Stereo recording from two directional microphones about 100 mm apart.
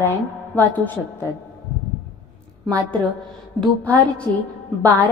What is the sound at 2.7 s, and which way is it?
A woman's voice, 15° left (ahead or behind).